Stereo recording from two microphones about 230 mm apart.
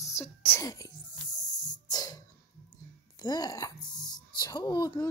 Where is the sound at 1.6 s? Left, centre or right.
Centre.